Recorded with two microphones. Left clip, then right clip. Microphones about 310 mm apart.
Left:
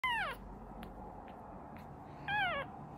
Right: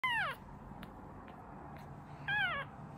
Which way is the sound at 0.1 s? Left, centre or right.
Centre.